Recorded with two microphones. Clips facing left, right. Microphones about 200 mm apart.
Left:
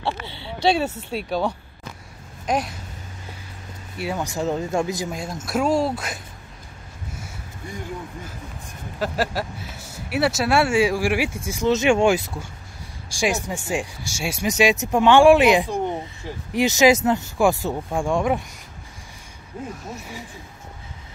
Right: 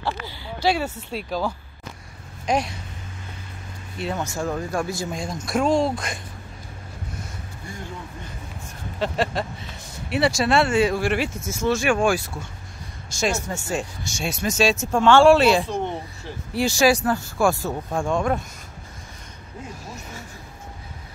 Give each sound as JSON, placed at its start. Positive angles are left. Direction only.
{"t": 0.0, "sound": "a sound", "side_deg": 25}
{"t": 0.8, "sound": "speech", "side_deg": 5}
{"t": 2.4, "sound": "speech", "side_deg": 0}
{"t": 4.0, "sound": "speech", "side_deg": 10}
{"t": 5.1, "sound": "speech", "side_deg": 5}
{"t": 9.0, "sound": "speech", "side_deg": 5}